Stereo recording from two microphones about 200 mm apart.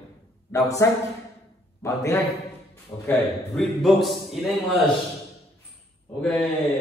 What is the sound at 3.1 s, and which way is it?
A man's voice, centre (ahead or behind).